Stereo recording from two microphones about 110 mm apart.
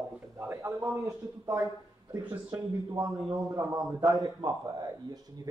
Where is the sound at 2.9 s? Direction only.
30° right (ahead or behind).